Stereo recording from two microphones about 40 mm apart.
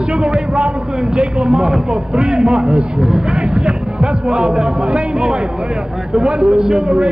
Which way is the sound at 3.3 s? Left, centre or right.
Right.